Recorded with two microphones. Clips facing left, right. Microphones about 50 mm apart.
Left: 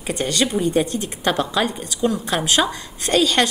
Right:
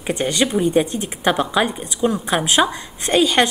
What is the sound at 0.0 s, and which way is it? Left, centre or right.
A woman's voice, centre.